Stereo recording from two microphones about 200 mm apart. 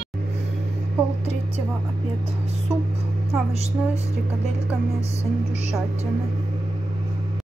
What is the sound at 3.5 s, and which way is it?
Speech, 30° right (ahead or behind).